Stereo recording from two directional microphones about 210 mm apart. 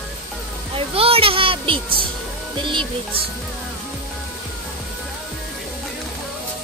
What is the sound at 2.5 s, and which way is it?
Speech, 25° right (ahead or behind).